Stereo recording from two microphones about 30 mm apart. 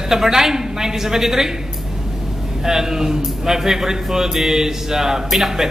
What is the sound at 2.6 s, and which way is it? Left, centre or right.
A man's voice, centre.